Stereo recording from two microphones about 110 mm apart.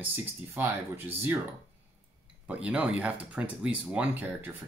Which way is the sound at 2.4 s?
10° right (ahead or behind).